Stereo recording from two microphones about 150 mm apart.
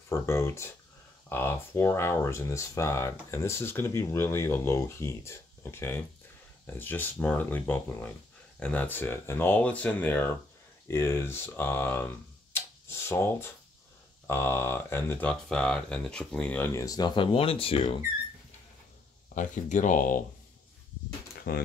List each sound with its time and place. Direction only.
0.1 s speech: 20° left (ahead or behind)
12.5 s tick-tock: 15° left (ahead or behind)
14.2 s speech: 15° left (ahead or behind); by 17.9 s 40° left (ahead or behind)
19.2 s speech: 55° left (ahead or behind)
21.5 s speech: 90° left